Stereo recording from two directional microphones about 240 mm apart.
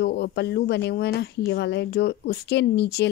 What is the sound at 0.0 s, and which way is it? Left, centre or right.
Speech, left.